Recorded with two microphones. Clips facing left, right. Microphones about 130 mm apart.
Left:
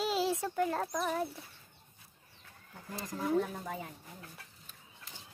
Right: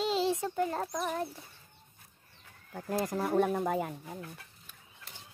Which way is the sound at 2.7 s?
60° right (ahead or behind).